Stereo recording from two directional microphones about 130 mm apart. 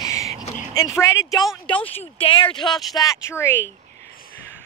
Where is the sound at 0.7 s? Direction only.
25° left (ahead or behind).